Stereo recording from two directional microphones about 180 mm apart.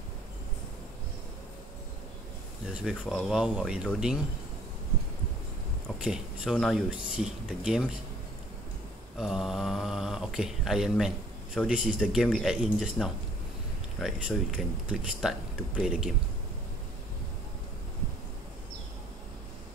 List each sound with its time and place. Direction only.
2.7 s speech: 5° right (ahead or behind)
6.0 s speech: centre (ahead or behind)
9.2 s speech: centre (ahead or behind)